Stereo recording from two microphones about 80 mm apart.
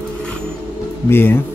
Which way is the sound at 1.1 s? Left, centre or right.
Left.